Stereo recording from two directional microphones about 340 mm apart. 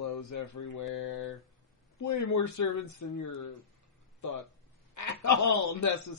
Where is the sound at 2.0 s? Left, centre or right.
Left.